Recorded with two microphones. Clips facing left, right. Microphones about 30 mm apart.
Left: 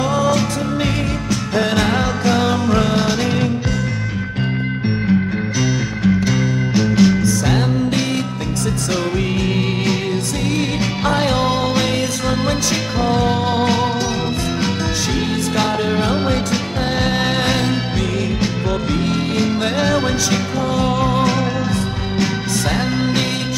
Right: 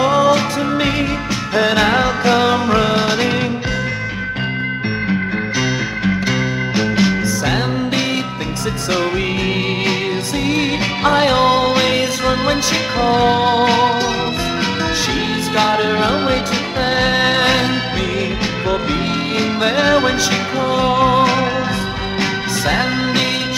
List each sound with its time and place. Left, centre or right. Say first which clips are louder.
0.0 s music: right 4 dB; right
6.0 s music: left 2 dB; centre
11.1 s music: right 5 dB; right
15.5 s music: right 5 dB; right
19.3 s music: right 4 dB; right